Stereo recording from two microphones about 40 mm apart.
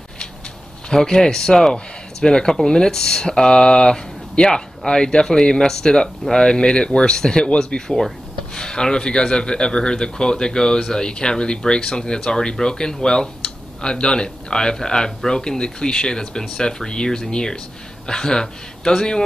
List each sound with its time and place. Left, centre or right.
0.8 s speech: centre